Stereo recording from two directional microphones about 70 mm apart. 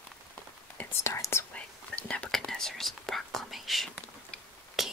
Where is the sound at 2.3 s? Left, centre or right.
Centre.